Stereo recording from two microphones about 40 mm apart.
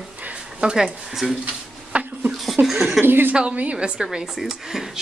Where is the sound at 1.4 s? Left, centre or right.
Right.